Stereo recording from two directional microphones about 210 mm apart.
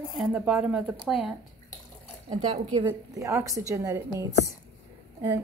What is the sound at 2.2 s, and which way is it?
Speech, 30° right (ahead or behind).